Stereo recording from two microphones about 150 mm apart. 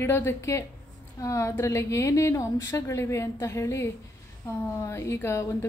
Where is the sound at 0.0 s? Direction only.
15° left (ahead or behind).